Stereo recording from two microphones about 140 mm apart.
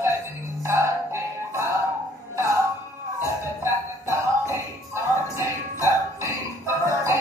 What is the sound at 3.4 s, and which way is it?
Music, 20° right (ahead or behind).